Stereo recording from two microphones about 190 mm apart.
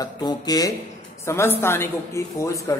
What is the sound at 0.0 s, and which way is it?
A woman's voice, 20° left (ahead or behind).